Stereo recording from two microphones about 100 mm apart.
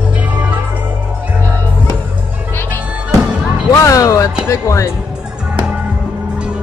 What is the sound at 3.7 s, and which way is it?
Music, 35° left (ahead or behind).